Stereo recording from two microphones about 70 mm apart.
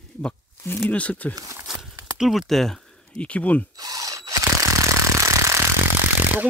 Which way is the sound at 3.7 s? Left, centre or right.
Right.